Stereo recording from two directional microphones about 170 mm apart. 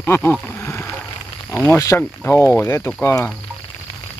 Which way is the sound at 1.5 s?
10° left (ahead or behind).